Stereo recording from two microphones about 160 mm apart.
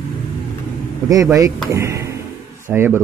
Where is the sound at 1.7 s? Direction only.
20° right (ahead or behind).